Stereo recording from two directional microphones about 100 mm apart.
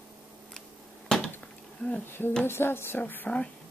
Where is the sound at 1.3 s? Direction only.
15° left (ahead or behind).